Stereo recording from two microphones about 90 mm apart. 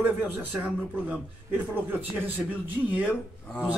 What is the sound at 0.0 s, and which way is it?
A man's voice, 20° right (ahead or behind).